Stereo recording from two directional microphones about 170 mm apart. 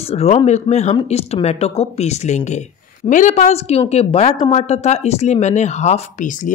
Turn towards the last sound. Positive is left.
turn(degrees=50)  # may be behind; listen again after turning